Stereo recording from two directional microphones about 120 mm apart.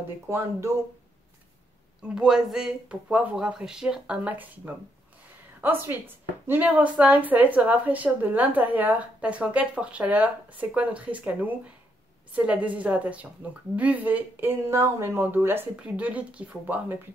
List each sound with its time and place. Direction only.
0.3 s speech: 20° right (ahead or behind)
2.0 s speech: 10° right (ahead or behind)